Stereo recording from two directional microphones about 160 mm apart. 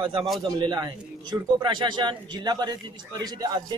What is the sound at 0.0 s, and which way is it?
Speech, 30° right (ahead or behind).